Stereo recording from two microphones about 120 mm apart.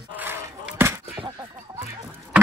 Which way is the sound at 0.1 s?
15° right (ahead or behind).